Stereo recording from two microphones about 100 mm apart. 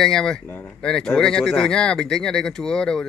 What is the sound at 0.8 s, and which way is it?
Speech, 10° left (ahead or behind).